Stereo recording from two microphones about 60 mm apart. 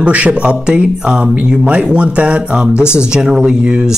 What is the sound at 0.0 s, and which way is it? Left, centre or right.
Speech, right.